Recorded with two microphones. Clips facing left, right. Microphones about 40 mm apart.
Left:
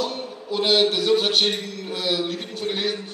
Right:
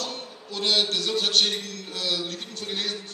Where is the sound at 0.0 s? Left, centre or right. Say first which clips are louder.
Left 7 dB; centre.